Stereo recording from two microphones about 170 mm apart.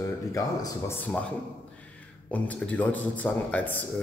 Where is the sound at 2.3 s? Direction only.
10° left (ahead or behind).